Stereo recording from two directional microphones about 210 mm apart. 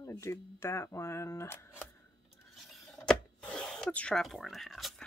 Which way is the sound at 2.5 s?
Centre (ahead or behind).